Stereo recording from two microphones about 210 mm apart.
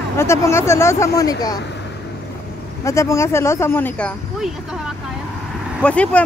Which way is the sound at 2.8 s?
15° left (ahead or behind).